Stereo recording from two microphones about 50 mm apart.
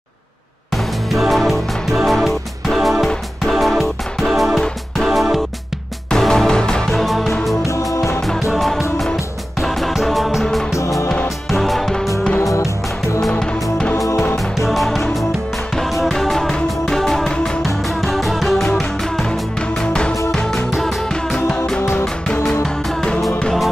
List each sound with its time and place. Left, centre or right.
1.1 s music: centre
6.0 s music: centre
6.9 s music: centre
7.6 s music: left
8.5 s music: centre
10.7 s music: left
11.5 s music: centre
12.4 s music: left
13.4 s music: centre
14.6 s music: centre
22.5 s music: centre